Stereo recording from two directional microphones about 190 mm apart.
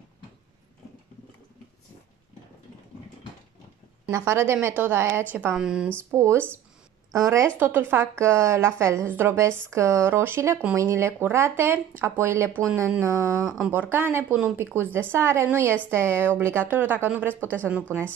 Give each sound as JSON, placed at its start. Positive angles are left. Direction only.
{"t": 4.1, "sound": "speech", "side_deg": -15}
{"t": 17.3, "sound": "a woman's voice", "side_deg": 10}
{"t": 17.9, "sound": "speech", "side_deg": -15}